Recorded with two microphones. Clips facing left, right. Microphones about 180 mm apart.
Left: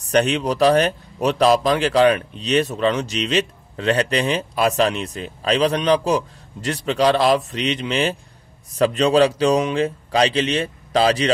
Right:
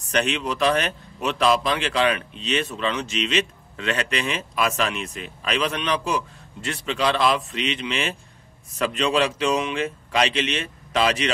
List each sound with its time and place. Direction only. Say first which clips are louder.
0.0 s speech: left 6 dB; 35° left (ahead or behind)